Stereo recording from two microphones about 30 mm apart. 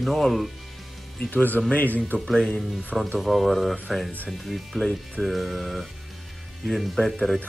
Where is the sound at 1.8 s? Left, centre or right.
Left.